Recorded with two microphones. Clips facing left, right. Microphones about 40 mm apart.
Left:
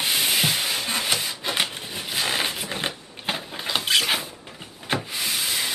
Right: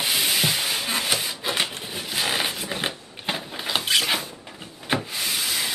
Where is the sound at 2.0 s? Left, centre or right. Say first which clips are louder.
Even; centre.